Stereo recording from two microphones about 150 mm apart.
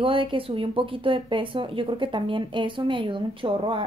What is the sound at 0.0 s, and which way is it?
Speech, 35° right (ahead or behind).